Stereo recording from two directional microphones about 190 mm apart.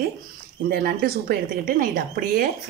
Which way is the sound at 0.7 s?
50° right (ahead or behind).